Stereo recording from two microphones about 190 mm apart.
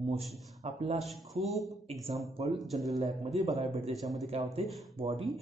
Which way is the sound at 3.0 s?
35° right (ahead or behind).